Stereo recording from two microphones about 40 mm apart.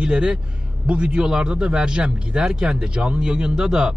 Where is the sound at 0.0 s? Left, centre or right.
Right.